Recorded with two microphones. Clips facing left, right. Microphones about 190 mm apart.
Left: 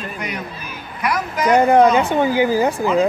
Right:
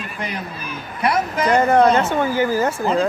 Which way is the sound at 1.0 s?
25° right (ahead or behind).